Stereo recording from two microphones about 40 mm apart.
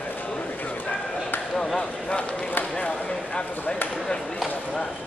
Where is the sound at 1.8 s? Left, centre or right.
Left.